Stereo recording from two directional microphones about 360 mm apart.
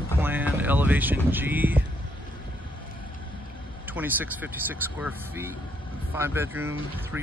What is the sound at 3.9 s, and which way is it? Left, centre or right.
Speech, centre.